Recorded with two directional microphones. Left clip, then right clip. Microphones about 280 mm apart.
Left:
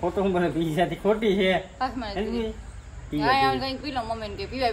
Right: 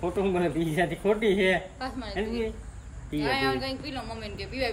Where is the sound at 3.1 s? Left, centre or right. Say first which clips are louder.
Left 5 dB; centre.